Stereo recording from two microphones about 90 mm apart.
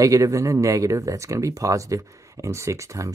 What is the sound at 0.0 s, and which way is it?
Speech, 35° right (ahead or behind).